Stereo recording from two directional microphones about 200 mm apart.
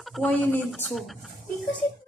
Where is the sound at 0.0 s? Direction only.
Centre (ahead or behind).